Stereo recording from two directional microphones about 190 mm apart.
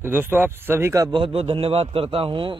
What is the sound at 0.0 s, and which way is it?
Speech, 10° right (ahead or behind).